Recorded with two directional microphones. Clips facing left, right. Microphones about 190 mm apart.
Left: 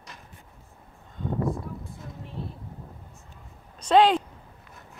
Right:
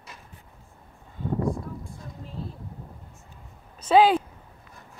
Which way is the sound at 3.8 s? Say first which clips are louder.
Right 1 dB; 5° right (ahead or behind).